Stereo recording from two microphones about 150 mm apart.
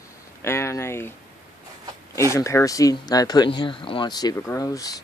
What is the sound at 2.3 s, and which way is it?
Speech, 20° left (ahead or behind).